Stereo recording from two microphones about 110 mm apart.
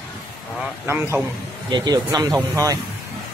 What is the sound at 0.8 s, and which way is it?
Speech, 20° right (ahead or behind).